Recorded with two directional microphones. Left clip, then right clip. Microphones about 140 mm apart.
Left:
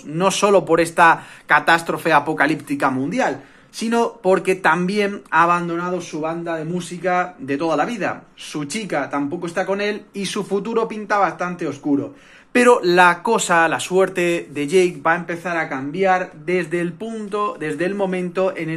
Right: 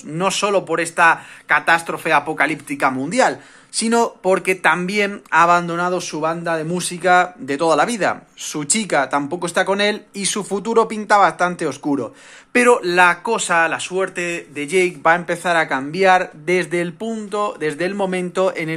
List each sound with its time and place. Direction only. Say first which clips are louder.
0.2 s speech: left 2 dB; centre (ahead or behind)
2.9 s speech: right 3 dB; 40° right (ahead or behind)
3.7 s speech: right 2 dB; 25° right (ahead or behind)
5.6 s speech: right 3 dB; 55° right (ahead or behind); by 7.1 s 90° right
7.4 s speech: right 4 dB; 40° right (ahead or behind)
10.1 s speech: even; 30° right (ahead or behind); by 12.0 s 60° right (ahead or behind)
12.5 s speech: even; 10° right (ahead or behind)
15.2 s speech: right 5 dB; 60° right (ahead or behind); by 16.3 s 80° right
16.4 s speech: right 2 dB; 40° right (ahead or behind)